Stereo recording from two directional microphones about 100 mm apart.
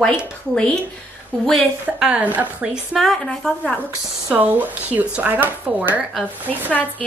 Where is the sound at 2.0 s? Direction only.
15° right (ahead or behind).